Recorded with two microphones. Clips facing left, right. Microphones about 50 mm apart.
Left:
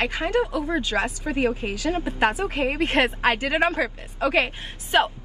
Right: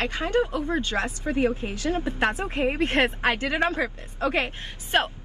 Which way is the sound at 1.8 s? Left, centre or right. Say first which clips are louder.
Left 2 dB; left.